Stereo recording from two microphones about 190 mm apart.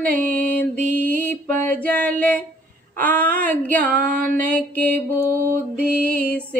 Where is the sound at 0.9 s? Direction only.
10° left (ahead or behind).